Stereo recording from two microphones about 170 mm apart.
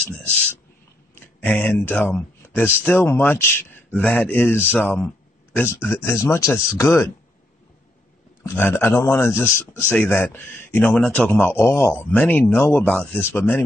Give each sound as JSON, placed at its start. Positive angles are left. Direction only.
{"t": 1.1, "sound": "speech", "side_deg": 10}
{"t": 8.5, "sound": "speech", "side_deg": 10}